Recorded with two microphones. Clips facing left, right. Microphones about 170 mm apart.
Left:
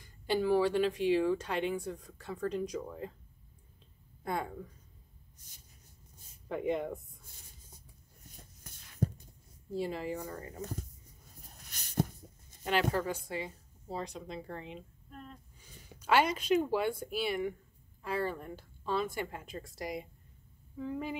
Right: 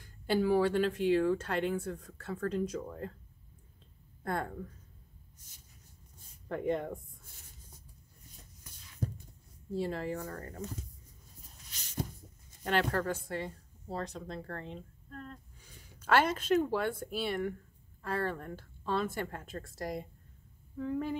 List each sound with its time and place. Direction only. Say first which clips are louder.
0.0 s speech: right 1 dB; centre (ahead or behind)
4.2 s speech: even; 10° left (ahead or behind)
6.5 s speech: even; 5° left (ahead or behind)
9.8 s speech: right 1 dB; 5° left (ahead or behind)
10.6 s speech: left 3 dB; 55° left (ahead or behind)
11.4 s a sound: left 2 dB; 60° left (ahead or behind)
12.9 s a woman's voice: even; 5° left (ahead or behind)
16.3 s speech: even; 15° left (ahead or behind)